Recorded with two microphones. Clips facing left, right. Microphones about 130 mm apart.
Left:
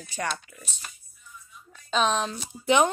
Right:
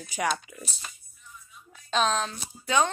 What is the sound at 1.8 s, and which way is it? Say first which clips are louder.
Speech: left 1 dB; 5° left (ahead or behind).